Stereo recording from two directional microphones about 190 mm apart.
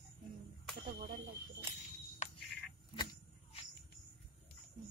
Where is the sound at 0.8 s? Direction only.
50° right (ahead or behind).